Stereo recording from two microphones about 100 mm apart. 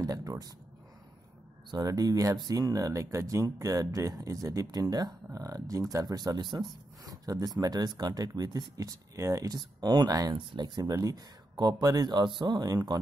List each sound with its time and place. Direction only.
0.0 s speech: 35° right (ahead or behind)
1.7 s speech: 40° right (ahead or behind)